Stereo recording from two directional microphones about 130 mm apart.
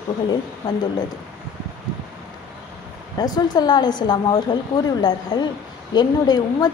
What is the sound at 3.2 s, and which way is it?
A woman's voice, 30° left (ahead or behind).